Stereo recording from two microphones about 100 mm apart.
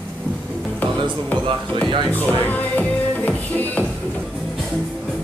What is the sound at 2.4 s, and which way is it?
Music, 15° left (ahead or behind).